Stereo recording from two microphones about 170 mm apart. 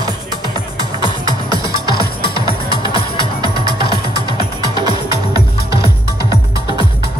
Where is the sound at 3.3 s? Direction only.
25° right (ahead or behind).